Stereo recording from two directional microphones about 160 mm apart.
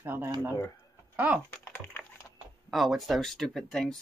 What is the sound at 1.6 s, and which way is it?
Typing, 15° left (ahead or behind).